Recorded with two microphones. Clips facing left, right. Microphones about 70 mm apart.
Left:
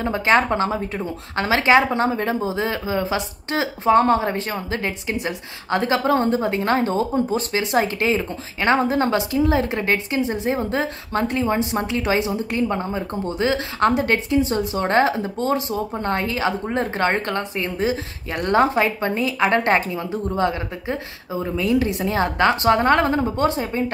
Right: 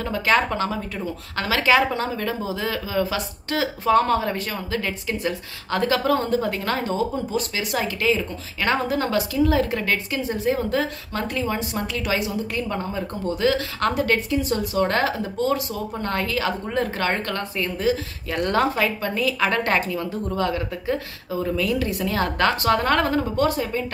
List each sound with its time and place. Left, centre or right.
0.0 s speech: left